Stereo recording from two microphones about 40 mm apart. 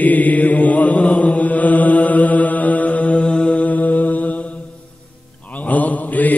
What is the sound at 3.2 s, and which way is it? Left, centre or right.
Mantra, left.